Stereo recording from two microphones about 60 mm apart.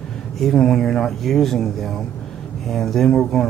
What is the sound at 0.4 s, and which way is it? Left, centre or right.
Speech, centre.